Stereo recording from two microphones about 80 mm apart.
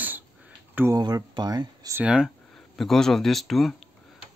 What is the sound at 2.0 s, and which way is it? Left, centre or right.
Speech, centre.